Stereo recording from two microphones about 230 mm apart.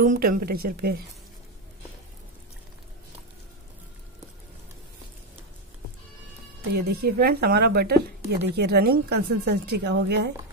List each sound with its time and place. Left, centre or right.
0.0 s a woman's voice: right
6.7 s a woman's voice: right